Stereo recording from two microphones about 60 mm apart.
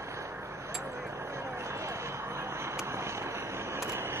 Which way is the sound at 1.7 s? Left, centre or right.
Right.